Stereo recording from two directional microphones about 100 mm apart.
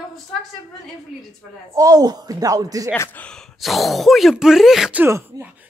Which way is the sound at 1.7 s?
40° right (ahead or behind).